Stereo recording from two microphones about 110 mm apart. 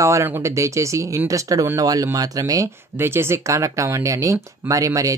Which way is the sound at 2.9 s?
20° right (ahead or behind).